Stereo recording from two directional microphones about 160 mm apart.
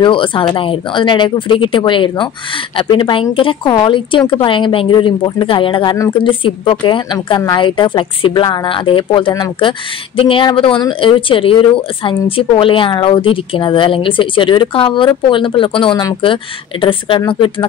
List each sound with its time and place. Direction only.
0.0 s speech: 30° left (ahead or behind)